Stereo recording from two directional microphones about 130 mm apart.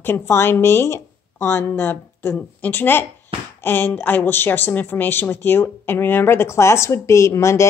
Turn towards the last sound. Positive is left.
turn(degrees=20)  # may be behind; listen again after turning